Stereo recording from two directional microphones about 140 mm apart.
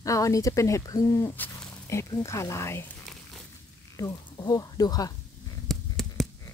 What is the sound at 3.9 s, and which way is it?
Speech, 25° left (ahead or behind).